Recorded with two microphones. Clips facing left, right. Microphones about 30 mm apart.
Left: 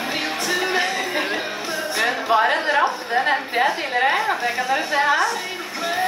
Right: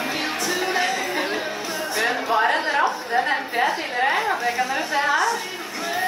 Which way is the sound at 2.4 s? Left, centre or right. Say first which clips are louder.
Even; centre.